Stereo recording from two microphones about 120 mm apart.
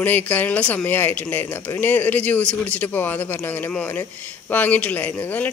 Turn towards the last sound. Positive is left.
turn(degrees=15)  # may be behind; listen again after turning